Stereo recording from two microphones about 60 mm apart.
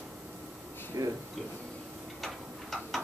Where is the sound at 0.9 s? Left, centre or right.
Right.